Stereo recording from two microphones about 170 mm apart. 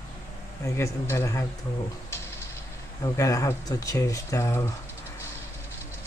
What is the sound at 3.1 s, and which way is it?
Speech, 20° left (ahead or behind).